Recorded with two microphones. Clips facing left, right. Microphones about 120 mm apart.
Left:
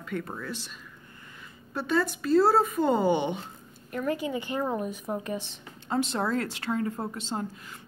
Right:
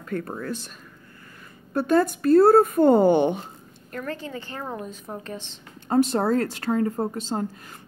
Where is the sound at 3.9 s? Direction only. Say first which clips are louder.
Left 3 dB; 10° left (ahead or behind).